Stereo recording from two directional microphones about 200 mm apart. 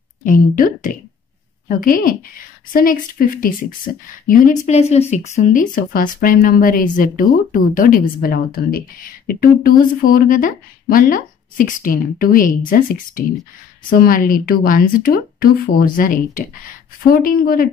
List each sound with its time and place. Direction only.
0.2 s speech: 40° left (ahead or behind)
4.6 s speech: 30° left (ahead or behind)